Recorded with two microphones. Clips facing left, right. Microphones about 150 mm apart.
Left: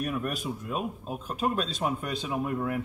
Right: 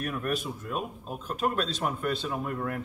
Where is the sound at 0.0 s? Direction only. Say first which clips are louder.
Even; 5° left (ahead or behind).